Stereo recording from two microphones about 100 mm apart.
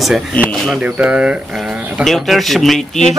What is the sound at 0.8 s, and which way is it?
Speech, 15° right (ahead or behind).